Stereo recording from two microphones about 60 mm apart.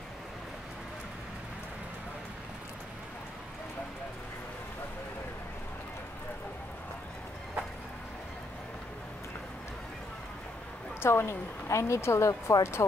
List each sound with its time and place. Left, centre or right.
11.0 s a woman's voice: left